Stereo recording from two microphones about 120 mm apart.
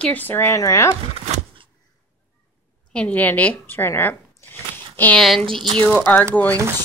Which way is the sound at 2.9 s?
10° left (ahead or behind).